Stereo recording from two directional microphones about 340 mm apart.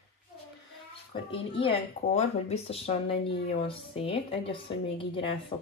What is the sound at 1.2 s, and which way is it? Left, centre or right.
Speech, centre.